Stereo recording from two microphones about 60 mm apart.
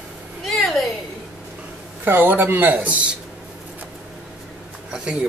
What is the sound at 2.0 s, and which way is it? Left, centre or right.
Speech, right.